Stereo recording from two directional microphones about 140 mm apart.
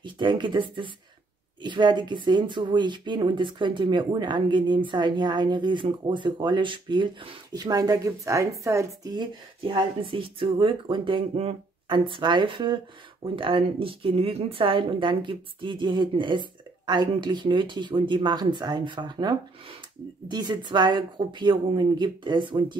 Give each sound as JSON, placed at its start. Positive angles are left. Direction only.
{"t": 0.0, "sound": "speech", "side_deg": -35}